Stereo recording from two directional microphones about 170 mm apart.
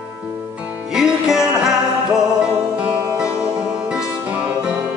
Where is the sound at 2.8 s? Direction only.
10° right (ahead or behind).